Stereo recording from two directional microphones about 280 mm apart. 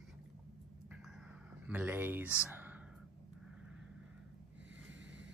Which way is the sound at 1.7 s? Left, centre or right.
Centre.